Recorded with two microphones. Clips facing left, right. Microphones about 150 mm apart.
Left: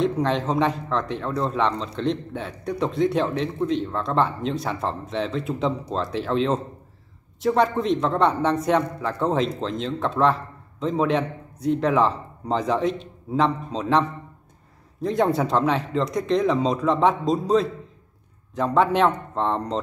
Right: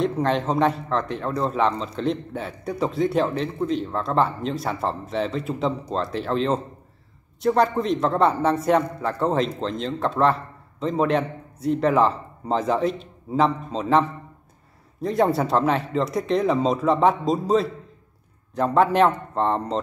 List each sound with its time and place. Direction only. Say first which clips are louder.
0.0 s a man's voice: even; centre (ahead or behind)